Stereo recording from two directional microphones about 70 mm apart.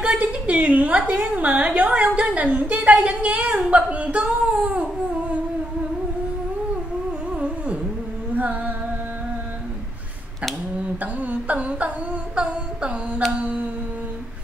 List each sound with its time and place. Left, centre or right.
0.0 s a woman's voice: centre
7.2 s music: centre
8.4 s humming: right
11.0 s a sound: right
13.3 s carnatic music: right